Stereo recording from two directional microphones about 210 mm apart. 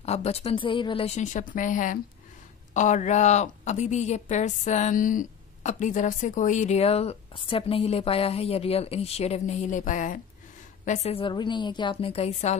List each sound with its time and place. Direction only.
0.0 s a woman's voice: 30° left (ahead or behind)